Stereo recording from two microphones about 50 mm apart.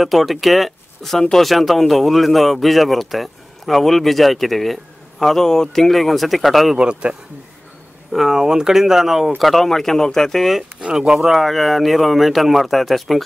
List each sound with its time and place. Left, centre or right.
0.0 s speech: centre
6.8 s a man's voice: centre
8.1 s speech: centre
11.0 s speech: centre